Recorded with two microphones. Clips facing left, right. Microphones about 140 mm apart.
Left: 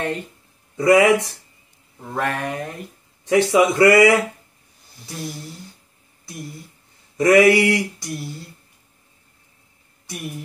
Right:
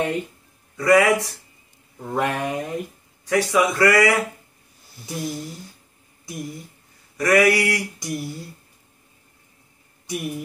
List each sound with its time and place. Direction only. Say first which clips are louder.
0.7 s speech: left 2 dB; 25° left (ahead or behind)
2.1 s speech: right 1 dB; 15° right (ahead or behind)
3.3 s speech: left 4 dB; 25° left (ahead or behind)
7.2 s speech: left 4 dB; 25° left (ahead or behind)
8.0 s speech: right 2 dB; 15° right (ahead or behind)